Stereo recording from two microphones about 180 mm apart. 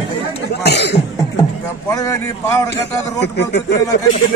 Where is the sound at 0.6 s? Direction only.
70° left (ahead or behind).